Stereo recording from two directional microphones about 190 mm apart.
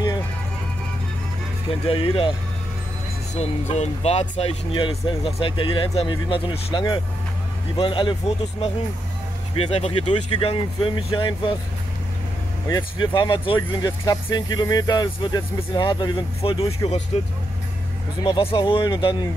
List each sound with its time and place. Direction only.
1.9 s speech: 30° left (ahead or behind)
3.3 s speech: 35° left (ahead or behind)
13.0 s speech: 25° left (ahead or behind)
18.2 s speech: 30° left (ahead or behind)